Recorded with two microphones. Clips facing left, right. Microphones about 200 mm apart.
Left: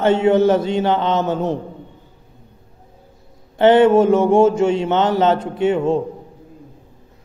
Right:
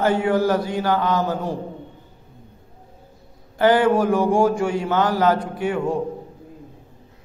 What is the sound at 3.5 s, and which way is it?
A man's voice, 25° left (ahead or behind).